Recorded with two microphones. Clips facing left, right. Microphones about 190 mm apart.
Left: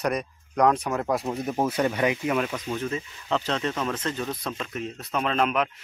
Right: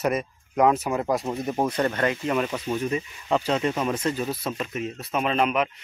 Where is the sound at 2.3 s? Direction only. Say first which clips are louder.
Right 2 dB; 5° right (ahead or behind).